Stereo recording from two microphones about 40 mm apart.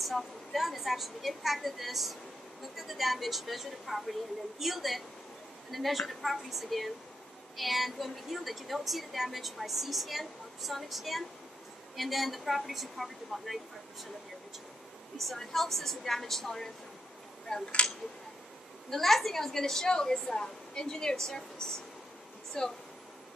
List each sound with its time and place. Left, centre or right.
0.0 s a woman's voice: centre
15.1 s a woman's voice: centre
18.9 s a woman's voice: centre